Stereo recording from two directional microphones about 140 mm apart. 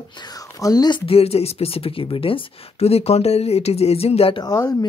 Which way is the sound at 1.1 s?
45° left (ahead or behind).